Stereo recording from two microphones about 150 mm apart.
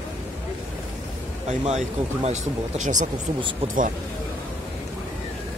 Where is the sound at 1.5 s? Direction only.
50° right (ahead or behind).